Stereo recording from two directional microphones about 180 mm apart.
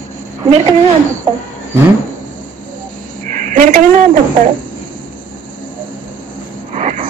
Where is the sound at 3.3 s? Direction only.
45° right (ahead or behind).